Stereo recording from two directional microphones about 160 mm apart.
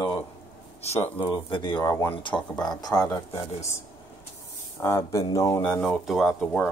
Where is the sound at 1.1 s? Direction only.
30° left (ahead or behind).